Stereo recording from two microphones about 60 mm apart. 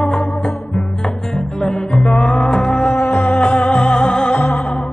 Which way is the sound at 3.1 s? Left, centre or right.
Left.